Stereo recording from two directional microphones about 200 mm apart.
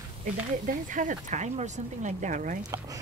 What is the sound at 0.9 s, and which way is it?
Speech, 40° right (ahead or behind).